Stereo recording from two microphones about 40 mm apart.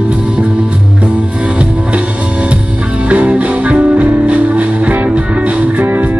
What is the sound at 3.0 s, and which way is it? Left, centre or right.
Music, right.